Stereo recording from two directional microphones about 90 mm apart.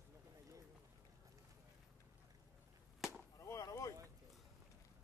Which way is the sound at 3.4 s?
35° left (ahead or behind).